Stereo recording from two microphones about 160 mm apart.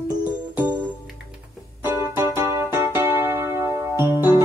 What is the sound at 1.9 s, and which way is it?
Music, 15° right (ahead or behind).